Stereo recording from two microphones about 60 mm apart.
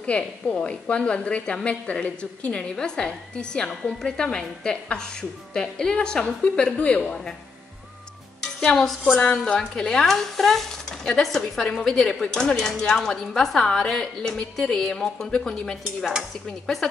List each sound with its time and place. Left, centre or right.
0.0 s a woman's voice: centre
8.4 s music: centre
9.2 s a woman's voice: centre